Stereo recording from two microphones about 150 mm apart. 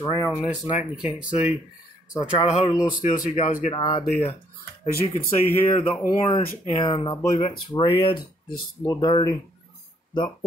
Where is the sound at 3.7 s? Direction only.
30° left (ahead or behind).